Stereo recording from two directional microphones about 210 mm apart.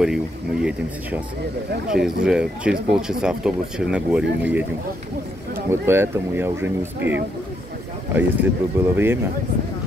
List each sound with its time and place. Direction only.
0.0 s speech: 5° right (ahead or behind)
5.7 s speech: 10° right (ahead or behind)